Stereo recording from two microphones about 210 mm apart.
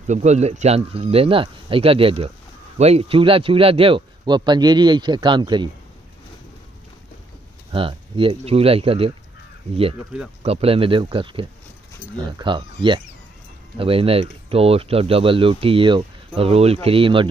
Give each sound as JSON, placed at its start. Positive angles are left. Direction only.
{"t": 0.0, "sound": "speech", "side_deg": -35}
{"t": 7.7, "sound": "speech", "side_deg": -25}
{"t": 10.4, "sound": "speech", "side_deg": -30}